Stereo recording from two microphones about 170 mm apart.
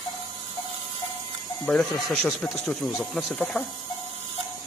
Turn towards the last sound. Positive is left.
turn(degrees=0)  # may be behind; listen again after turning